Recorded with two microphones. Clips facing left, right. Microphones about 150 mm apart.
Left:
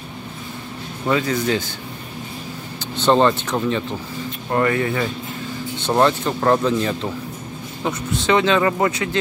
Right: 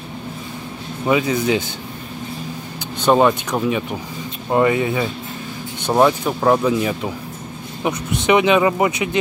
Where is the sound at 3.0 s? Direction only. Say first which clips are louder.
Right 1 dB; 10° right (ahead or behind).